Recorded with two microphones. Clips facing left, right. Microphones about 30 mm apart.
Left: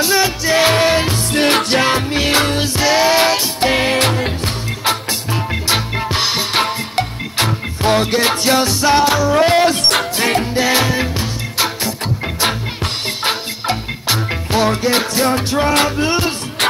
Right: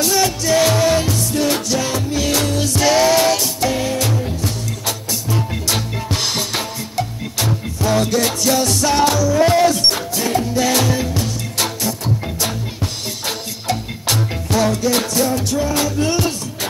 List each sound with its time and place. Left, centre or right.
0.0 s music: left
1.3 s music: left
2.8 s music: left
3.7 s music: left
5.5 s music: left
6.5 s music: left
8.6 s music: left
9.3 s a sound: left
10.1 s music: left
10.6 s music: left
13.2 s music: left
15.2 s music: left
16.0 s music: left